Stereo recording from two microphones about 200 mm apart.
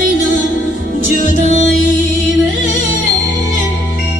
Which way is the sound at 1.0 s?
40° left (ahead or behind).